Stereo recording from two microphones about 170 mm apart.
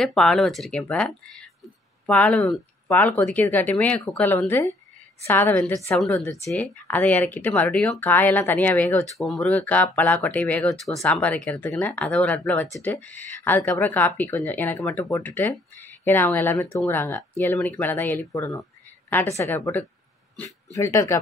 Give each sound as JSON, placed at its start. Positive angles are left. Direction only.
{"t": 0.0, "sound": "speech", "side_deg": 0}